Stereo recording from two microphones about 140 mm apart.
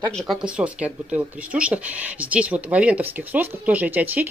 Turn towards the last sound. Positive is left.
turn(degrees=-10)  # may be behind; listen again after turning